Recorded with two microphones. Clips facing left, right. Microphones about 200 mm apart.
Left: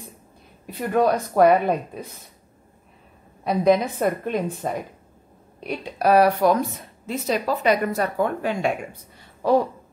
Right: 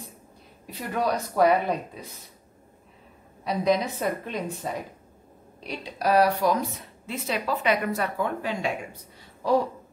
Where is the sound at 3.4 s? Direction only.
55° left (ahead or behind).